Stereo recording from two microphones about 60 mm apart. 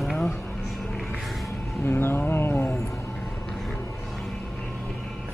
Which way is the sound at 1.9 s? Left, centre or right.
Left.